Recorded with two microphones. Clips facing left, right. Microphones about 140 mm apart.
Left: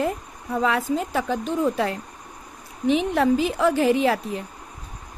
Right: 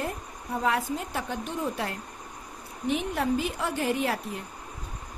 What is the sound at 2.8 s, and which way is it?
Speech, 90° left.